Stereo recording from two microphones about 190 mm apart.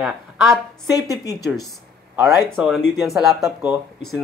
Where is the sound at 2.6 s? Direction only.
Centre (ahead or behind).